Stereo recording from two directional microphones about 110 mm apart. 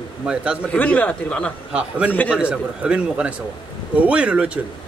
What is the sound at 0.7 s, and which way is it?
Speech, 15° left (ahead or behind).